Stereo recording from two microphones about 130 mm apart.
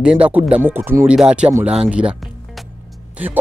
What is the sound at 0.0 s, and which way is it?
Speech, 10° right (ahead or behind).